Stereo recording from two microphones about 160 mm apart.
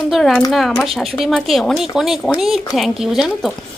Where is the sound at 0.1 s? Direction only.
5° left (ahead or behind).